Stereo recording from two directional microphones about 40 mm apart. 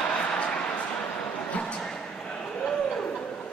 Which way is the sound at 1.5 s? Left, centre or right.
Left.